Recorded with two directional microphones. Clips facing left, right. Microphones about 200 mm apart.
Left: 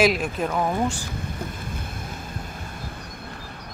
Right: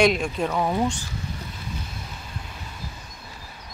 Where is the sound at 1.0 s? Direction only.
55° left (ahead or behind).